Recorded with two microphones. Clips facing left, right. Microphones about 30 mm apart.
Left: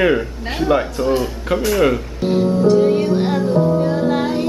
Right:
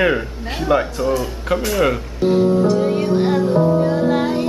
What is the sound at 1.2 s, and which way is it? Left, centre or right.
Music, centre.